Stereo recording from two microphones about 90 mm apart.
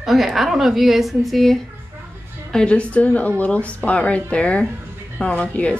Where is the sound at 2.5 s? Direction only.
15° left (ahead or behind).